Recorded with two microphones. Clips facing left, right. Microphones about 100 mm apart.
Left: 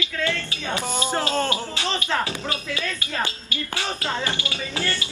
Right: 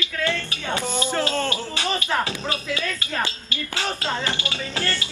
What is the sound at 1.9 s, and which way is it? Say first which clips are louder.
Speech: right 1 dB; 15° right (ahead or behind).